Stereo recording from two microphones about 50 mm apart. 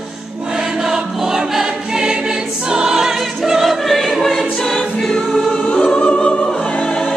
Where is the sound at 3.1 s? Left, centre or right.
Centre.